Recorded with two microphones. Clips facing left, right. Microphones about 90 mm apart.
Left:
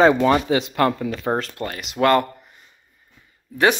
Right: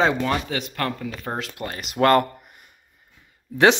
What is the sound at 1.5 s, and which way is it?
Speech, 20° right (ahead or behind).